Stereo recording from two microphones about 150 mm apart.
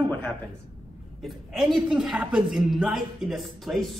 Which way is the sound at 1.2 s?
Centre (ahead or behind).